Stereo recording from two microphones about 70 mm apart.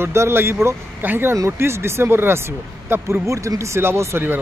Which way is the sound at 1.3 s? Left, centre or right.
Right.